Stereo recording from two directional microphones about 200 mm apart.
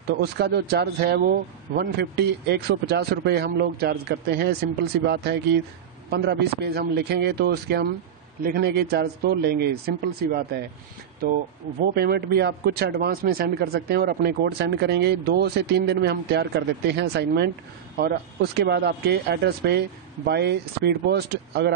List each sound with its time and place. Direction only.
0.1 s speech: 55° right (ahead or behind)
11.9 s speech: 50° right (ahead or behind)